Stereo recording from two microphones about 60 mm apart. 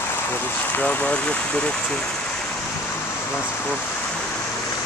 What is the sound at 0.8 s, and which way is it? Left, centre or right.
Speech, left.